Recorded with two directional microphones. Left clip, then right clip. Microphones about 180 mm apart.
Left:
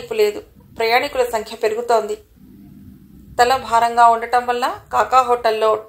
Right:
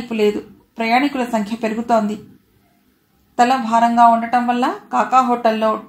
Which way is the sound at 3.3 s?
35° left (ahead or behind).